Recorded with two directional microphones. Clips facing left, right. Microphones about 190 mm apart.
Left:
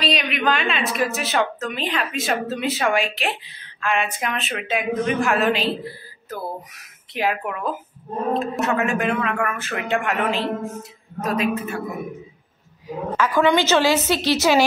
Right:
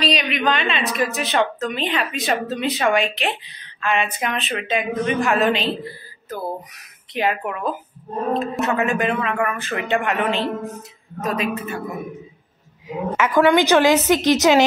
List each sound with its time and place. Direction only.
0.0 s a woman's voice: centre (ahead or behind)
7.2 s a woman's voice: centre (ahead or behind)
12.8 s a woman's voice: 20° right (ahead or behind)